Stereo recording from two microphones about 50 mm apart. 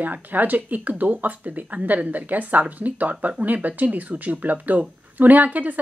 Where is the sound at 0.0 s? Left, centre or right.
Right.